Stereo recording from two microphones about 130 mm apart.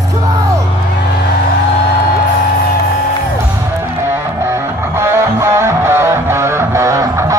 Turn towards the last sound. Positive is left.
turn(degrees=-20)  # may be behind; listen again after turning